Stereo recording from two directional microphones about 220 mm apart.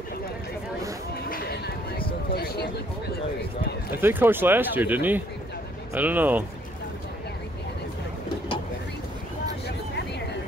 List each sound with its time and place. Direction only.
1.3 s a sound: 40° left (ahead or behind)
2.3 s speech: 45° left (ahead or behind)
4.0 s speech: 10° right (ahead or behind)